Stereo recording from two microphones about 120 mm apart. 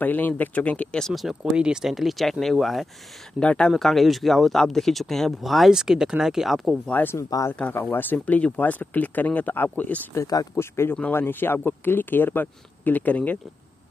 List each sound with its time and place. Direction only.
0.0 s speech: 15° left (ahead or behind); by 6.8 s centre (ahead or behind)
6.9 s speech: 15° left (ahead or behind)
7.2 s speech: 30° left (ahead or behind)
7.5 s speech: 10° left (ahead or behind)
10.2 s speech: 30° left (ahead or behind); by 13.4 s 15° left (ahead or behind)